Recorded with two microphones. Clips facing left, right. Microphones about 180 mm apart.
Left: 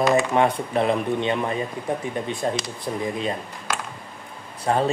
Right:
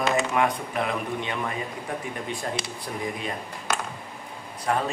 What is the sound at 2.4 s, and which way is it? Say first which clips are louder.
Speech: left 7 dB; 25° left (ahead or behind).